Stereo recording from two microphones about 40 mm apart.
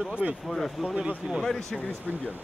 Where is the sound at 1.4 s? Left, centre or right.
Centre.